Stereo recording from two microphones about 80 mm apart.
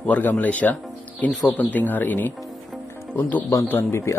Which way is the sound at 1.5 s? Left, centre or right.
Left.